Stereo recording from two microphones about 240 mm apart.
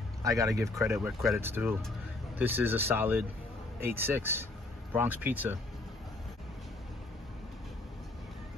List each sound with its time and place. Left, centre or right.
0.2 s speech: centre
0.8 s speech: centre